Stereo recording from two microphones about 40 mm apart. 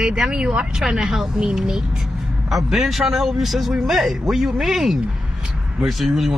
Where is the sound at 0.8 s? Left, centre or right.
Centre.